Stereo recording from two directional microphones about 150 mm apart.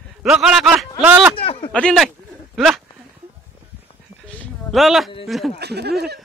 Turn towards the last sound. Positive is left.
turn(degrees=-90)